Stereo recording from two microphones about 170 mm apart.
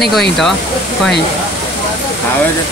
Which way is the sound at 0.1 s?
Centre (ahead or behind).